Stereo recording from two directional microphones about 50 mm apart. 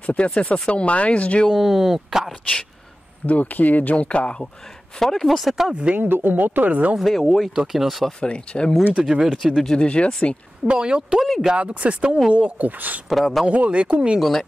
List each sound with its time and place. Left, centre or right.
0.0 s speech: left
1.5 s speech: centre
3.3 s speech: left
4.9 s speech: centre
5.9 s speech: right
7.0 s speech: centre
8.2 s speech: centre
9.0 s speech: centre
9.7 s speech: left
10.7 s speech: centre
11.1 s speech: centre
11.5 s speech: right
13.1 s speech: centre
13.5 s speech: right